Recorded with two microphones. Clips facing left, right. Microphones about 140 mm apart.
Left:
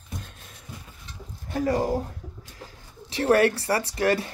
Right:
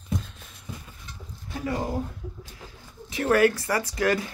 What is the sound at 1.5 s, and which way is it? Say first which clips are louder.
Speech: left 6 dB; 40° left (ahead or behind).